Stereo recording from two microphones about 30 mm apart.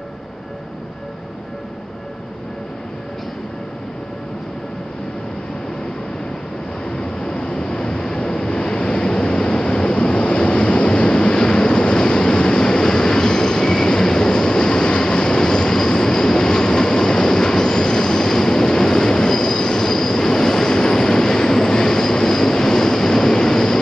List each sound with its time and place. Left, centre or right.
7.0 s vehicle: left